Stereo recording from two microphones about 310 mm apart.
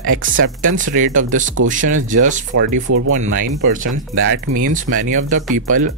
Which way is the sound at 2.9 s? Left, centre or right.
Right.